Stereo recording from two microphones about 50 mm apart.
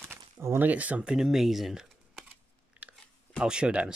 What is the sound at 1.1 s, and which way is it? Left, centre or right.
Speech, centre.